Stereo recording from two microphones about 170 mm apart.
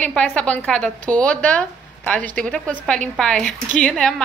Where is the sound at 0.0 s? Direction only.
10° left (ahead or behind).